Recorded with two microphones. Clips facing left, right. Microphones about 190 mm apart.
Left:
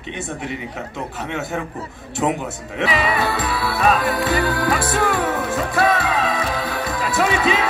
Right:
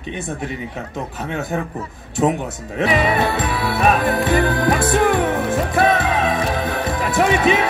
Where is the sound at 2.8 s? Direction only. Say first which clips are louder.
Right 3 dB; 50° right (ahead or behind).